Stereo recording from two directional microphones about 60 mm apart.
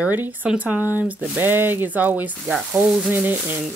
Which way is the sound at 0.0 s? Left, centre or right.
Right.